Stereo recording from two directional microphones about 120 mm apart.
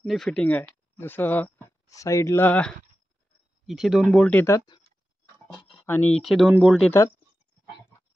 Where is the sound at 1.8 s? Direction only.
25° left (ahead or behind); by 2.8 s 10° left (ahead or behind).